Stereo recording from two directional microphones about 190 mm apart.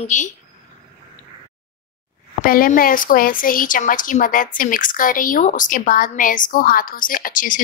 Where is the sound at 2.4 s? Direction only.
50° left (ahead or behind).